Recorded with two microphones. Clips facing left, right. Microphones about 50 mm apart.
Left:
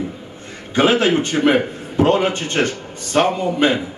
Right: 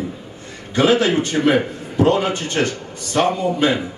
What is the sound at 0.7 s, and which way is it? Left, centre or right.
A man's voice, left.